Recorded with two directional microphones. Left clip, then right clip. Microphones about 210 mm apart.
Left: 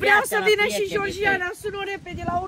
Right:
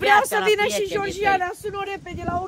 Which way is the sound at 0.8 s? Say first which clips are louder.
Right 1 dB; 50° right (ahead or behind).